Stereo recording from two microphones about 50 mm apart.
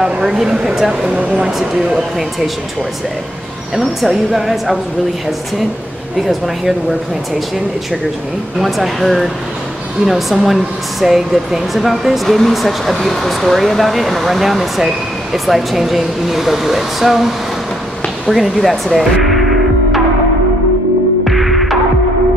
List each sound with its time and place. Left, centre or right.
0.0 s speech: centre
1.0 s speech: right
1.4 s speech: centre
3.7 s speech: centre
6.2 s speech: centre
8.5 s speech: centre
21.2 s throbbing: centre